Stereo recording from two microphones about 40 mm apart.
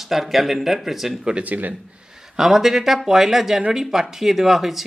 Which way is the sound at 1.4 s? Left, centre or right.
Right.